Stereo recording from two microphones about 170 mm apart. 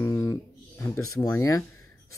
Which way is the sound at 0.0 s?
15° left (ahead or behind).